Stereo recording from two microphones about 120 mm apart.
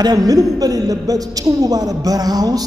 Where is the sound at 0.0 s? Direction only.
30° right (ahead or behind).